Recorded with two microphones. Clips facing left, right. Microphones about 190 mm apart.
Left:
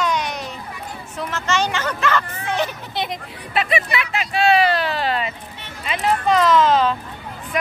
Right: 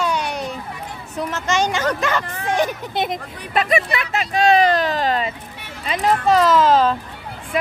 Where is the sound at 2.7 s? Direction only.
50° right (ahead or behind).